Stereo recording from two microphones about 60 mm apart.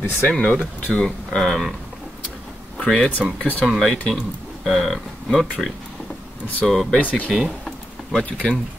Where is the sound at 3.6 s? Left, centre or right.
Centre.